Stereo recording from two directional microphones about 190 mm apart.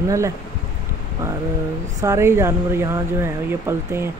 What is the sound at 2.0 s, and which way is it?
Speech, 15° right (ahead or behind).